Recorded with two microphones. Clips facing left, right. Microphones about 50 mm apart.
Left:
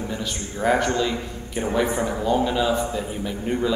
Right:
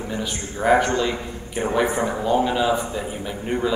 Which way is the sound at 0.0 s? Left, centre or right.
Centre.